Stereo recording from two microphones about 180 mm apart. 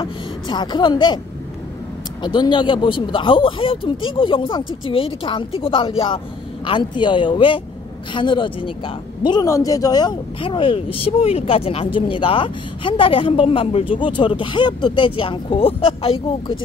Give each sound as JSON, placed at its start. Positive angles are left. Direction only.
{"t": 0.0, "sound": "a woman's voice", "side_deg": 25}
{"t": 2.2, "sound": "speech", "side_deg": 25}